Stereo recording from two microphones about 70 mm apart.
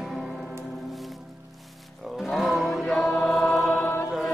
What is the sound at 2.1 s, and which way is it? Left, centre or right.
Mantra, centre.